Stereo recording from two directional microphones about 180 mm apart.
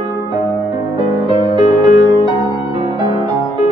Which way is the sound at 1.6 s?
50° left (ahead or behind).